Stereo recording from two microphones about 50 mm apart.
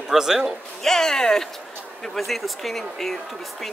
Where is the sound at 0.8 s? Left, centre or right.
Centre.